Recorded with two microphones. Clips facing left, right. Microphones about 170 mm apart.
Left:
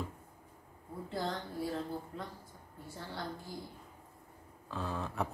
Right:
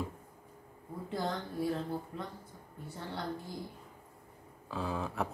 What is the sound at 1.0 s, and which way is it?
Speech, 20° right (ahead or behind).